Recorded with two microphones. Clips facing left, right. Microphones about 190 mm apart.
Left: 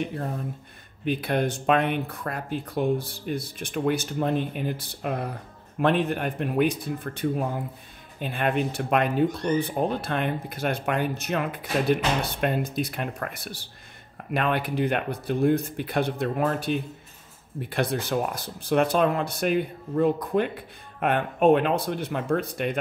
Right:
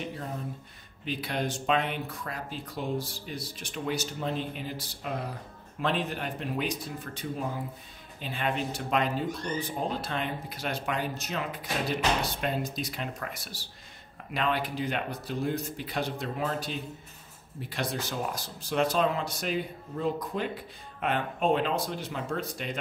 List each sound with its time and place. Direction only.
1.0 s speech: 55° left (ahead or behind)